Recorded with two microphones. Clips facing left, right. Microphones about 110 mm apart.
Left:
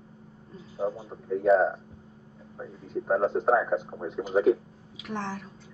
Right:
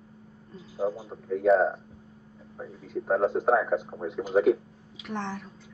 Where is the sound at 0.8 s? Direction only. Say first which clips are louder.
Right 1 dB; 5° right (ahead or behind).